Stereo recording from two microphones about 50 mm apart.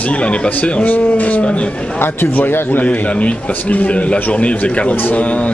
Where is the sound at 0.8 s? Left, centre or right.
Left.